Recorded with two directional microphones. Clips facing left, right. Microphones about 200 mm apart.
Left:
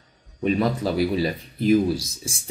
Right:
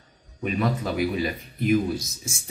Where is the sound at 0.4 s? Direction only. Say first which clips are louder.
Left 4 dB; 35° left (ahead or behind).